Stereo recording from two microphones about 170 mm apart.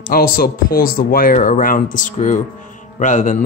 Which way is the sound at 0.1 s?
60° left (ahead or behind).